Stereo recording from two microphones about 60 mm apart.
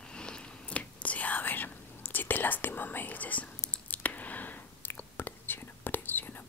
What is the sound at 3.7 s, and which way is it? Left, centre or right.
Whispering, left.